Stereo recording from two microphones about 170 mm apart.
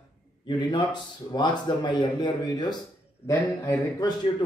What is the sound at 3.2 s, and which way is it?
Speech, 15° left (ahead or behind).